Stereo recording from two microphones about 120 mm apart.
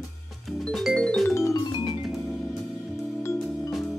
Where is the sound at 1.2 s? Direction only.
25° left (ahead or behind).